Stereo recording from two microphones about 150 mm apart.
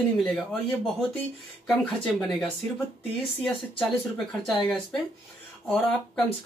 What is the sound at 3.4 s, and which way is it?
Speech, 5° left (ahead or behind).